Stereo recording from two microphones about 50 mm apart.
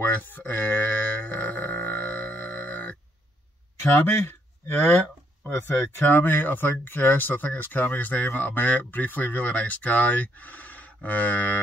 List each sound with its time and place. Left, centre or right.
0.0 s music: left
4.0 s speech: left